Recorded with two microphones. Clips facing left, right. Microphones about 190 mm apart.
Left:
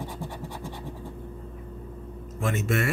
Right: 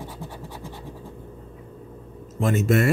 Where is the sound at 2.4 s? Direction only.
35° right (ahead or behind).